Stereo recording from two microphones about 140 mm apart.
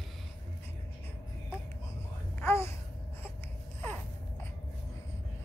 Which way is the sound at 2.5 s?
20° left (ahead or behind).